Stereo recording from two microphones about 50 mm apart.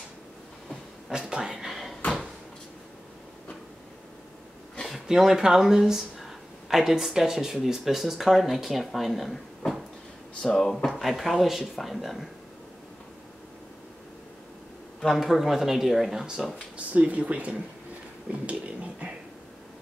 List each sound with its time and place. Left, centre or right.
1.0 s a sound: centre
1.5 s a sound: centre
5.0 s speech: centre
10.4 s speech: centre
10.9 s speech: centre
15.0 s speech: centre
16.7 s speech: right
18.5 s beatboxing: right